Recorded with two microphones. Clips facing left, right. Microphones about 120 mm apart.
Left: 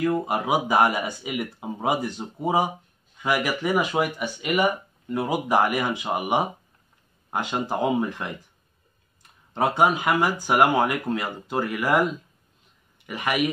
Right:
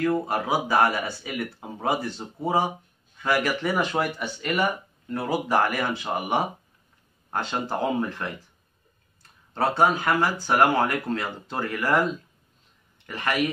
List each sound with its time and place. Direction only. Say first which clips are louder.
0.0 s speech: left 1 dB; 15° left (ahead or behind)
9.5 s a man's voice: left 1 dB; 15° left (ahead or behind)